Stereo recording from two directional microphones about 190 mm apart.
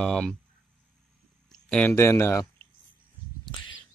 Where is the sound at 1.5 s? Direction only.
5° left (ahead or behind).